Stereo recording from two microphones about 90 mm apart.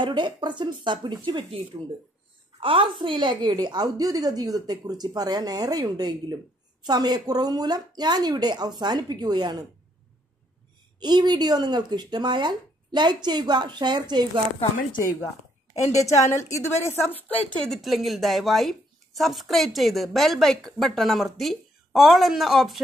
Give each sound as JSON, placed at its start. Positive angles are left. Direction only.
{"t": 0.0, "sound": "speech", "side_deg": -60}
{"t": 2.6, "sound": "a woman's voice", "side_deg": -75}
{"t": 11.0, "sound": "a woman's voice", "side_deg": -55}
{"t": 16.0, "sound": "a woman's voice", "side_deg": 35}
{"t": 17.5, "sound": "speech", "side_deg": 10}
{"t": 17.8, "sound": "a woman's voice", "side_deg": 0}